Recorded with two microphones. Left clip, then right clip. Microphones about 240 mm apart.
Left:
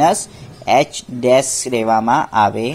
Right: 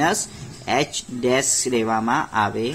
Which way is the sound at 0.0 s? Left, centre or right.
Centre.